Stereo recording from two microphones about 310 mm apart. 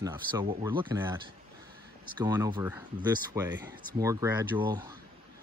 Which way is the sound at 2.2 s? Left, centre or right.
Centre.